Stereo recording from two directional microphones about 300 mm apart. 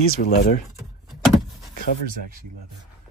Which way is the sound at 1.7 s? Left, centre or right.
Left.